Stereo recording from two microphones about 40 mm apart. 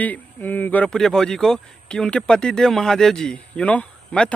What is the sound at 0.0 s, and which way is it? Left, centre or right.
Speech, left.